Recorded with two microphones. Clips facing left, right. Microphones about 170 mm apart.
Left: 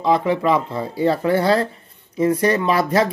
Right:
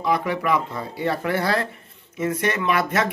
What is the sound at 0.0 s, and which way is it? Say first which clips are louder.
Speech: left 5 dB; 25° left (ahead or behind).